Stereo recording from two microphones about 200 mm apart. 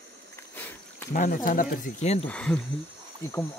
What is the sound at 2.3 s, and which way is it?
Speech, 5° left (ahead or behind).